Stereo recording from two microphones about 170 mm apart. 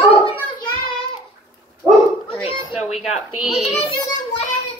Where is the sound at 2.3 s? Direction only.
30° left (ahead or behind).